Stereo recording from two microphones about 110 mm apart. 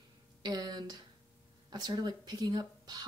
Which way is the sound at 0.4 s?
40° right (ahead or behind).